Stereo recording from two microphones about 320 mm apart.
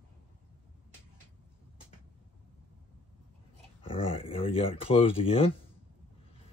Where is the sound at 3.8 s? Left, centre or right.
Centre.